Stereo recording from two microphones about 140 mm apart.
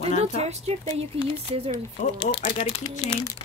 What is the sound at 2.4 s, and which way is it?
Speech, 65° left (ahead or behind).